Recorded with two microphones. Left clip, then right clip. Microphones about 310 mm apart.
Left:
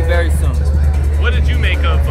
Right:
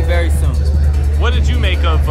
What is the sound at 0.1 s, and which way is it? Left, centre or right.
Music, centre.